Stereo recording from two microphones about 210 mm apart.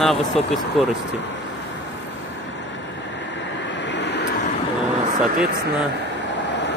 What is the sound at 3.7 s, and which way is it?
Vehicle, 55° left (ahead or behind).